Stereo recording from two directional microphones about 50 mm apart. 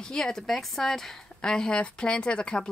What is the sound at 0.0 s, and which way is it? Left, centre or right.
Speech, centre.